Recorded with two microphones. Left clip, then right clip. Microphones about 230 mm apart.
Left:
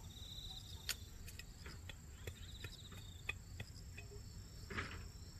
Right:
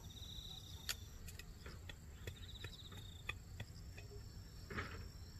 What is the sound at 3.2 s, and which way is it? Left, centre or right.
Cricket, centre.